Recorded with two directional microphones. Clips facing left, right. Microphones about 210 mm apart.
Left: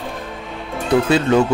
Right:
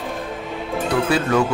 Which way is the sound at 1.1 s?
25° left (ahead or behind).